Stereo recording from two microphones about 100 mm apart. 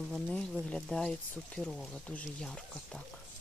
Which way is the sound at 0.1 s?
10° left (ahead or behind).